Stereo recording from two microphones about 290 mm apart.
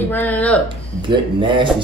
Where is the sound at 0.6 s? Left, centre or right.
Centre.